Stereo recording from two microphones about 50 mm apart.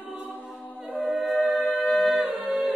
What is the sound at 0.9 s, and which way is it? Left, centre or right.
Choir, right.